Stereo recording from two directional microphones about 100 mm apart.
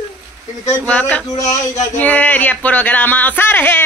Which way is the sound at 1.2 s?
35° left (ahead or behind).